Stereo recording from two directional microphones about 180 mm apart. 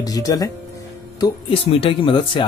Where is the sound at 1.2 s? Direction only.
30° left (ahead or behind).